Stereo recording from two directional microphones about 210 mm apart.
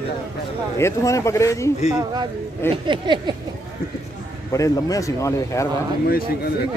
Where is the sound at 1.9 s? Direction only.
20° right (ahead or behind).